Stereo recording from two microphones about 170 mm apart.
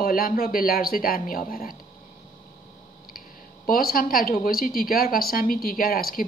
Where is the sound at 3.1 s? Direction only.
60° left (ahead or behind).